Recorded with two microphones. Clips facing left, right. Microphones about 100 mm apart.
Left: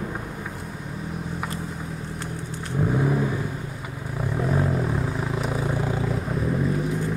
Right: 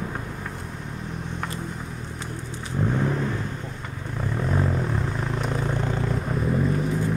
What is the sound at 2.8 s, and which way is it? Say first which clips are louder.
Vehicle: left 2 dB; 10° left (ahead or behind).